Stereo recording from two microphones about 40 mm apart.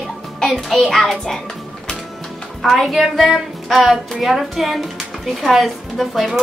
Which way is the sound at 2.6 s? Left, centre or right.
Centre.